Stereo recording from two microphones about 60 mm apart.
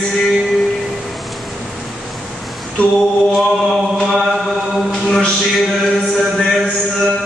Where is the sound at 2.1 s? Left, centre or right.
Centre.